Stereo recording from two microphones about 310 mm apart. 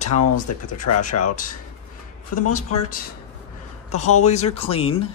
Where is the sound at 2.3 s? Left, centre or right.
Left.